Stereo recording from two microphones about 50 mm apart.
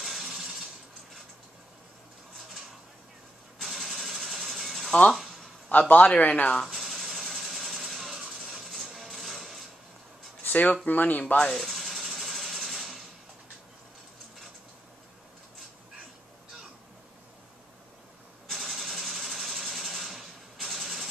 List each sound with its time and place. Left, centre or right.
0.0 s sewing machine: centre
3.5 s vehicle: centre
5.1 s a sound: centre
5.7 s a man's voice: left
6.5 s speech: centre
6.8 s music: centre
10.4 s a sound: left
10.9 s a man's voice: left
11.3 s a sound: centre
18.5 s sewing machine: centre